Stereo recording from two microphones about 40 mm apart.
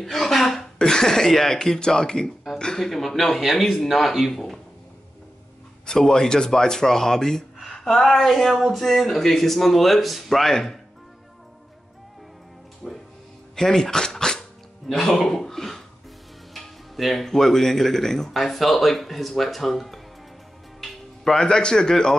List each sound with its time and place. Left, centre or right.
0.0 s a sound: centre
0.7 s speech: centre
2.8 s speech: centre
4.3 s speech: centre
5.9 s speech: centre
12.8 s speech: centre
16.5 s music: centre
17.2 s speech: centre